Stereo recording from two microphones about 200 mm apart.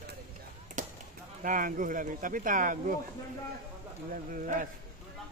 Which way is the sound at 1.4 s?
40° right (ahead or behind).